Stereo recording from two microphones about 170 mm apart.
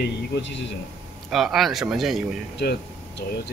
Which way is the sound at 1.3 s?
Centre (ahead or behind).